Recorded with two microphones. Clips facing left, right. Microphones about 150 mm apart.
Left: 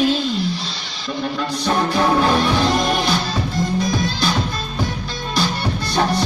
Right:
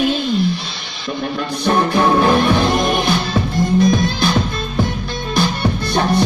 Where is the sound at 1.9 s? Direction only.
55° right (ahead or behind).